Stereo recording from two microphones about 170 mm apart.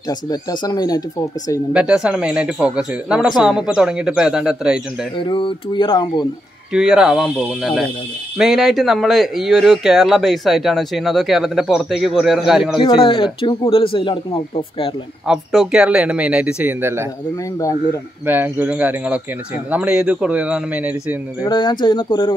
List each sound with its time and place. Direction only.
0.3 s speech: 25° left (ahead or behind)
1.7 s speech: 5° right (ahead or behind)
5.2 s speech: 30° left (ahead or behind)
6.7 s speech: 5° right (ahead or behind)
12.7 s speech: 30° left (ahead or behind)
15.2 s speech: centre (ahead or behind)
18.2 s speech: 10° right (ahead or behind)
21.4 s speech: 25° left (ahead or behind)